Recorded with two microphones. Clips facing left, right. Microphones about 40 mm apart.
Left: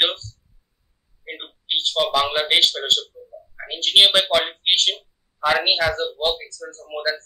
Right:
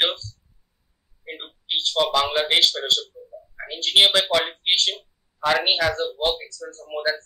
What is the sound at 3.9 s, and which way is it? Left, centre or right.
Speech, left.